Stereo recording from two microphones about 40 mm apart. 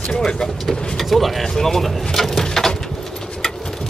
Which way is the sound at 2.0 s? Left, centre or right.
Centre.